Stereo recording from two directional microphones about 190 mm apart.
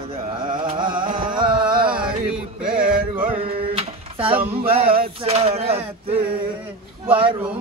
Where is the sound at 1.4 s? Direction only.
25° right (ahead or behind).